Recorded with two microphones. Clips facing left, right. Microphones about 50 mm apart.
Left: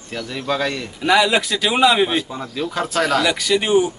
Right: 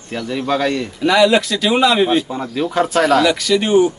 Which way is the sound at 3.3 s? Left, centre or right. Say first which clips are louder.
Right 2 dB; centre.